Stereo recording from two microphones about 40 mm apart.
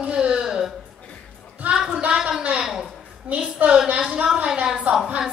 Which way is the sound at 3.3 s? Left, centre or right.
Right.